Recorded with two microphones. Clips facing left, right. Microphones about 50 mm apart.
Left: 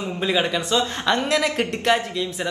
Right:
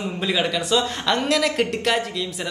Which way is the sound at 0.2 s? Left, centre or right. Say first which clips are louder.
Left 1 dB; centre.